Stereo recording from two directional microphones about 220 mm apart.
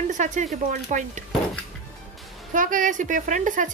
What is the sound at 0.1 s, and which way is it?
A woman's voice, 35° right (ahead or behind).